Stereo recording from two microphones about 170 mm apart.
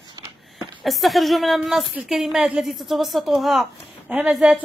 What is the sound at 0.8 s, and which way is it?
A woman's voice, centre (ahead or behind).